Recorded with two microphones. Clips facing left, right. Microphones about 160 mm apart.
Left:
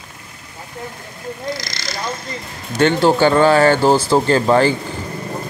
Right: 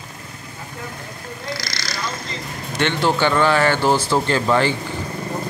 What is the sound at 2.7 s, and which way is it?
Speech, 40° left (ahead or behind).